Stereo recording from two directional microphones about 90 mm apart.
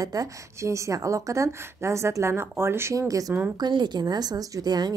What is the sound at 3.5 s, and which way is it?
A woman's voice, 55° right (ahead or behind).